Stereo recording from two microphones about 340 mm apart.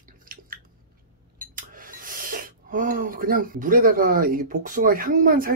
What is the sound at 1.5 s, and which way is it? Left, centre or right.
Speech, right.